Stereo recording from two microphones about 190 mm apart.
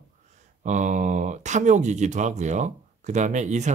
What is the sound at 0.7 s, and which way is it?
Speech, 40° right (ahead or behind).